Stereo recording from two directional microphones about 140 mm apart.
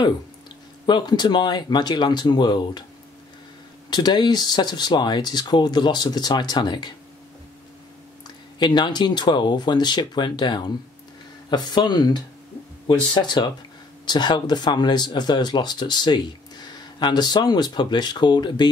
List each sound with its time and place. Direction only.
0.8 s speech: 30° left (ahead or behind)
3.9 s speech: 30° left (ahead or behind)
8.5 s speech: 30° left (ahead or behind)